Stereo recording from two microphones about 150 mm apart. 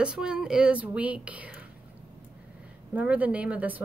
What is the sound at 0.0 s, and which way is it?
A woman's voice, 5° right (ahead or behind).